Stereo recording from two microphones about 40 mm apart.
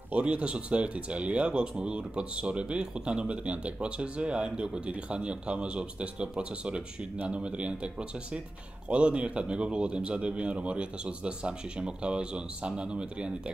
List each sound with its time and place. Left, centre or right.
0.2 s speech: right